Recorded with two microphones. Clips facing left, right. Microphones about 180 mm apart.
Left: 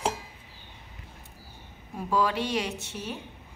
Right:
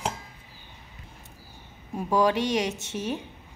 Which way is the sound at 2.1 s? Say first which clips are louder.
Right 4 dB; 15° right (ahead or behind).